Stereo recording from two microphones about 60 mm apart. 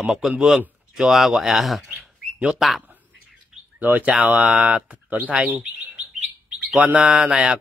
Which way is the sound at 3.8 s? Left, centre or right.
Right.